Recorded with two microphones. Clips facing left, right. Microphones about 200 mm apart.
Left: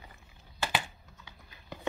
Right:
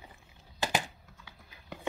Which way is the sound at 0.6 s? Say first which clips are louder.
Right 1 dB; 35° right (ahead or behind).